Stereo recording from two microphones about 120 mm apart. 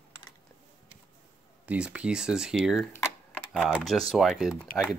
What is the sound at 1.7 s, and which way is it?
Speech, 10° right (ahead or behind).